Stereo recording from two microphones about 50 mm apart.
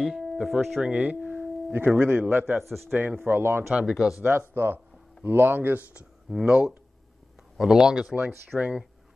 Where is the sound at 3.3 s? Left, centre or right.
Right.